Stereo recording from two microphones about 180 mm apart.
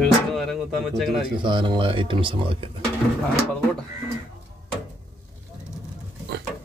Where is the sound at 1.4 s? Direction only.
25° right (ahead or behind).